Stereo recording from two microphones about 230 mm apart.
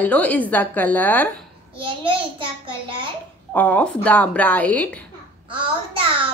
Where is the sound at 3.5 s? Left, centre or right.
Centre.